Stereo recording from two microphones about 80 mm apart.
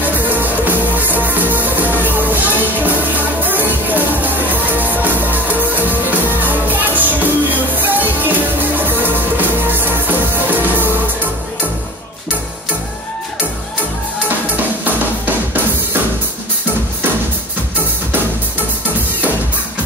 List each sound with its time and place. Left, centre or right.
0.0 s music: right
14.9 s drum: right